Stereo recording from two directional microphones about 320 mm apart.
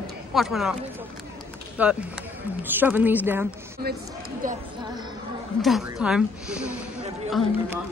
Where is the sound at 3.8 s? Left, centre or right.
Right.